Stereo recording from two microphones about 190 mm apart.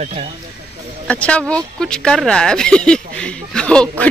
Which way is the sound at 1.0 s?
5° left (ahead or behind).